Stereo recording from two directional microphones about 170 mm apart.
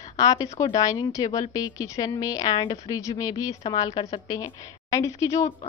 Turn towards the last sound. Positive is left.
turn(degrees=20)  # may be behind; listen again after turning